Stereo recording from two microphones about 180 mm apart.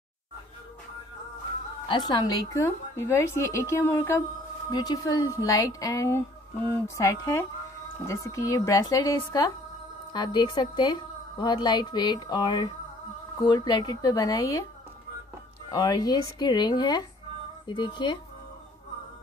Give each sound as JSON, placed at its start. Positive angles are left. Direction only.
{"t": 1.9, "sound": "a woman's voice", "side_deg": 25}
{"t": 15.7, "sound": "speech", "side_deg": 20}